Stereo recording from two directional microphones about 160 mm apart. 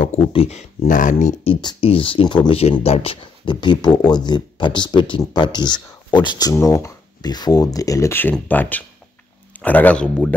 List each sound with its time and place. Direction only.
0.2 s speech: 35° left (ahead or behind); by 1.1 s 55° left (ahead or behind)
1.1 s speech: 35° left (ahead or behind); by 10.3 s 5° left (ahead or behind)